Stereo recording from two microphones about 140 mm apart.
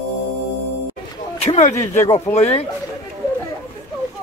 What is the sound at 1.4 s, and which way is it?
Speech, 55° left (ahead or behind).